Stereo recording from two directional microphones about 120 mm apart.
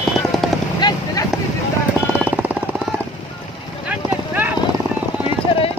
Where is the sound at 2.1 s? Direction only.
15° right (ahead or behind).